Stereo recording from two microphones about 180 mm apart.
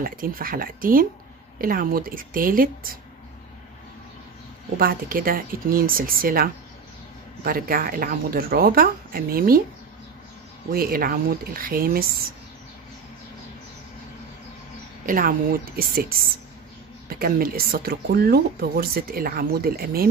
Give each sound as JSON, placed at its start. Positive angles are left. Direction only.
{"t": 0.0, "sound": "speech", "side_deg": -50}
{"t": 4.7, "sound": "speech", "side_deg": -55}
{"t": 10.7, "sound": "speech", "side_deg": -55}
{"t": 15.0, "sound": "speech", "side_deg": -50}